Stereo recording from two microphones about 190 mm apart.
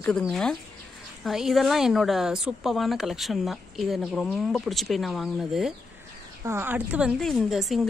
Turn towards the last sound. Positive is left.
turn(degrees=0)  # may be behind; listen again after turning